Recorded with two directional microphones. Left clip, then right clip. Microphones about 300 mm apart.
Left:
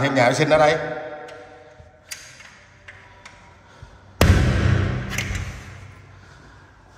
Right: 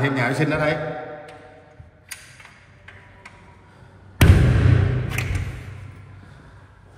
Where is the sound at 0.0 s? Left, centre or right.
Centre.